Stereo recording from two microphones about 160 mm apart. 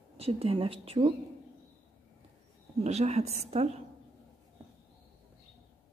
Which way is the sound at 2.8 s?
40° right (ahead or behind).